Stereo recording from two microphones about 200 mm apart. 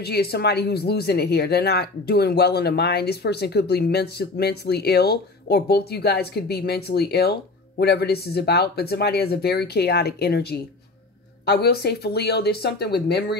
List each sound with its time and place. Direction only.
0.0 s speech: 55° left (ahead or behind)